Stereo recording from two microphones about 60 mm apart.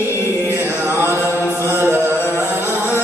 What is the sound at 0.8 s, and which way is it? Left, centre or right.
Chant, right.